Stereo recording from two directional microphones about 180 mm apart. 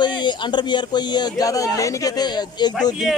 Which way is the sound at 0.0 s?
25° left (ahead or behind).